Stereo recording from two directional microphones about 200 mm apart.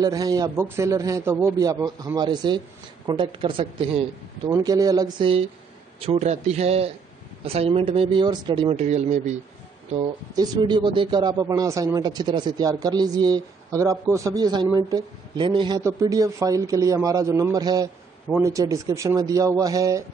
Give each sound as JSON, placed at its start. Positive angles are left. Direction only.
{"t": 0.0, "sound": "a man's voice", "side_deg": -20}
{"t": 10.3, "sound": "a man's voice", "side_deg": -20}